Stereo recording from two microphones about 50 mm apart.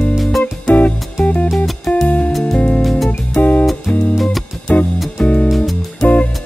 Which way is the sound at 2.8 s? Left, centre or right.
Centre.